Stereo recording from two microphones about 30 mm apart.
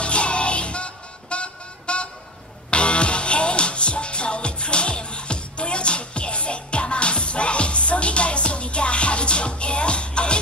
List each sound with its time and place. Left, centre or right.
0.0 s music: left